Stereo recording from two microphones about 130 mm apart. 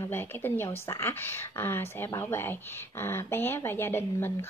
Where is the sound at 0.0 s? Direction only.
15° left (ahead or behind).